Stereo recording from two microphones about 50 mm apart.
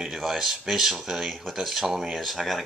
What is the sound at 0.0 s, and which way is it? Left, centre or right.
Speech, centre.